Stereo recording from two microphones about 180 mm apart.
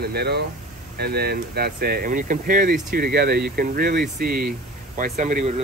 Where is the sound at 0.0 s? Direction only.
65° right (ahead or behind).